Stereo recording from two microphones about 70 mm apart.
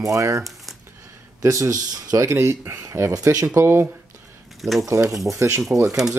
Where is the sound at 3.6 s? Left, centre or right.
Right.